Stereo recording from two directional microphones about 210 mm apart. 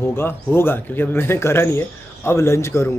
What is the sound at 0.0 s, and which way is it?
Speech, 10° left (ahead or behind).